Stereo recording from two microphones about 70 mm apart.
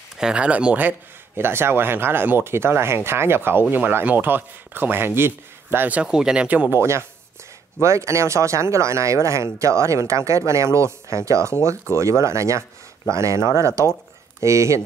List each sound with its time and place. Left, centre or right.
0.2 s speech: centre
0.8 s speech: right
6.0 s speech: centre
6.7 s speech: right